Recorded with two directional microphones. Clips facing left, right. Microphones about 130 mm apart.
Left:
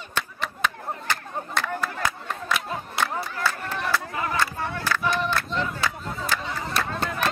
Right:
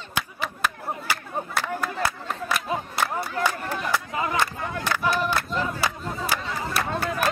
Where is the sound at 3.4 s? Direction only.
15° right (ahead or behind).